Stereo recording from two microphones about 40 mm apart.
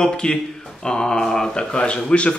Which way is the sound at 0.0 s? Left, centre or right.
Centre.